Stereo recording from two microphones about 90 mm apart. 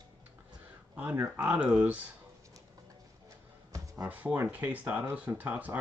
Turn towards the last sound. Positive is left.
turn(degrees=-20)  # may be behind; listen again after turning